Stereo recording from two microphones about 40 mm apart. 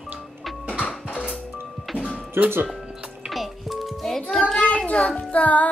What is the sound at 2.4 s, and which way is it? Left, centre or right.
Speech, right.